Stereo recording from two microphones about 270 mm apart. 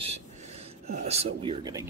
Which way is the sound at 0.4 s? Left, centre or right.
Right.